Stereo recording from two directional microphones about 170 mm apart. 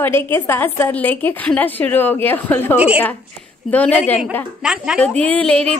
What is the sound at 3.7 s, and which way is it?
Speech, 10° left (ahead or behind).